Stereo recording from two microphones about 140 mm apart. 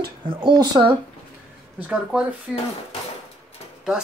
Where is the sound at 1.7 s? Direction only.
10° right (ahead or behind).